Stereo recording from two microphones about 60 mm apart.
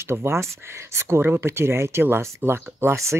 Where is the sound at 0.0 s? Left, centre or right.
Right.